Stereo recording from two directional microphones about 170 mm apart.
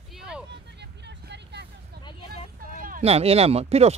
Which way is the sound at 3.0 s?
35° right (ahead or behind).